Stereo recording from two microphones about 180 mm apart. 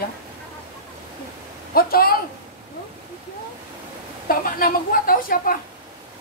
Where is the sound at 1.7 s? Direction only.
55° left (ahead or behind).